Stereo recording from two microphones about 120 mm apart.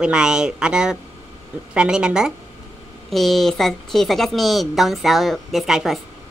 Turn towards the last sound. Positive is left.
turn(degrees=0)  # may be behind; listen again after turning